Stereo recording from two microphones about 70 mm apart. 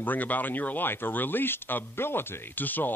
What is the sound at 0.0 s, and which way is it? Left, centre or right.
Speech, left.